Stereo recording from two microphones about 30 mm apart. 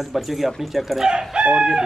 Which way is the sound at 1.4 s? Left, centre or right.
Right.